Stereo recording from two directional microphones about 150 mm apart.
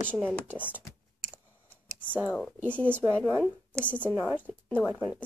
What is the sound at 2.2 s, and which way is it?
Speech, 10° left (ahead or behind).